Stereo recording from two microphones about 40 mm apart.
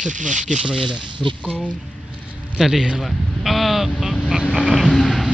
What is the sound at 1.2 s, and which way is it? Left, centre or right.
Speech, centre.